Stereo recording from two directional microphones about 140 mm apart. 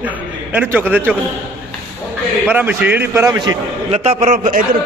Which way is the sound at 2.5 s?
10° right (ahead or behind).